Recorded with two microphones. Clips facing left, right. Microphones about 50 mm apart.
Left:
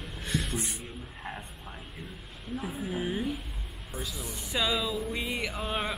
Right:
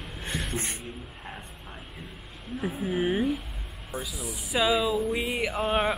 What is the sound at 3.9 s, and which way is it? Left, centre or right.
Speech, centre.